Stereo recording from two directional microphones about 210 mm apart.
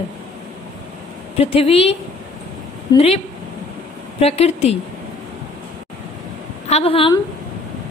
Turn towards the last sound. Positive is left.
turn(degrees=25)  # may be behind; listen again after turning